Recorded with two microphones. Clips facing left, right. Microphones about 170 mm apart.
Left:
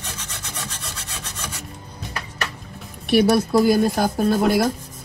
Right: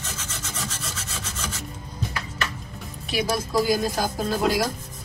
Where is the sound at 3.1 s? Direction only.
65° left (ahead or behind).